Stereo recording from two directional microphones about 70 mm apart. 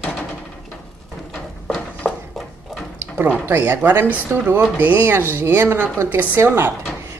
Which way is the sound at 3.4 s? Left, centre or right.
Right.